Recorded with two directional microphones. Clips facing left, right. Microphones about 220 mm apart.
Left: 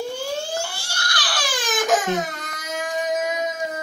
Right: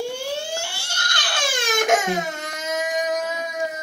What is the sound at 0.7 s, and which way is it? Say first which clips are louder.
Crying: left 1 dB; 25° right (ahead or behind).